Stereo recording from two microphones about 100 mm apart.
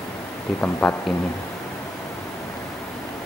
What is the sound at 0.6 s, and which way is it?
Speech, 15° left (ahead or behind).